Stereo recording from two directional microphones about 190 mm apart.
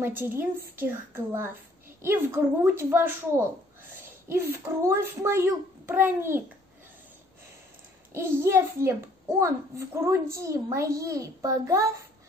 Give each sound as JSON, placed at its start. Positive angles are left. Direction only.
{"t": 0.4, "sound": "a woman's voice", "side_deg": -10}
{"t": 8.1, "sound": "a woman's voice", "side_deg": -15}